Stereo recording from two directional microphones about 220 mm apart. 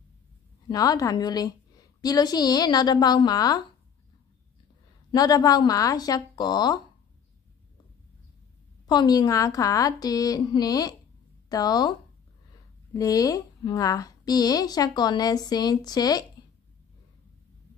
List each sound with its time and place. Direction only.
0.7 s a woman's voice: 15° left (ahead or behind)
5.1 s a woman's voice: 15° left (ahead or behind)
8.8 s a woman's voice: 20° left (ahead or behind)
12.9 s a woman's voice: 15° left (ahead or behind)